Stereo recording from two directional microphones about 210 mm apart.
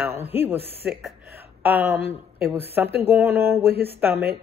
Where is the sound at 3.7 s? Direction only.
50° right (ahead or behind).